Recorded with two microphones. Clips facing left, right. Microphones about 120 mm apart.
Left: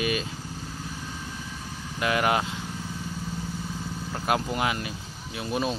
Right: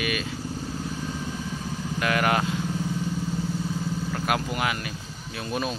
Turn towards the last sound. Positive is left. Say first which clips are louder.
# even
turn(degrees=25)  # may be behind; listen again after turning